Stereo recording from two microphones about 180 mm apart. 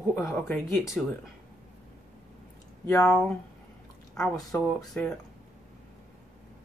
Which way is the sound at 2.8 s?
15° left (ahead or behind).